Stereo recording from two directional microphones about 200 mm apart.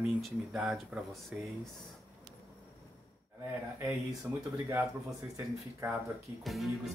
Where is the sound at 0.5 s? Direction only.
5° right (ahead or behind).